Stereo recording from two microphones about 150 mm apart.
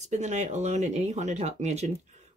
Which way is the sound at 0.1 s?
50° right (ahead or behind).